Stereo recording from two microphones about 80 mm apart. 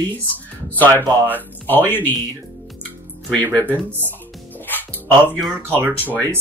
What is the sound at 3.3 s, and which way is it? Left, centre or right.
Speech, left.